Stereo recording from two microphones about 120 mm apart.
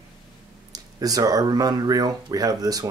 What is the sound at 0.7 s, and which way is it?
Speech, 30° right (ahead or behind).